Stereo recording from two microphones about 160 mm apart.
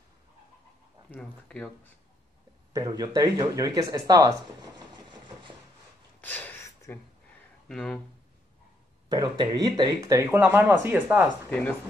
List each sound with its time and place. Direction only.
1.1 s speech: 5° left (ahead or behind)
2.7 s speech: 25° right (ahead or behind)
6.2 s a sound: 10° left (ahead or behind)
7.6 s speech: 5° left (ahead or behind)
9.1 s speech: 25° right (ahead or behind); by 11.2 s 10° right (ahead or behind)